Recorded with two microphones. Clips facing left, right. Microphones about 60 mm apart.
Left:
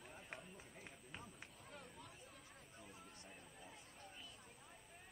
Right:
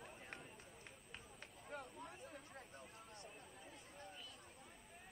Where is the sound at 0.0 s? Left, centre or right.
Centre.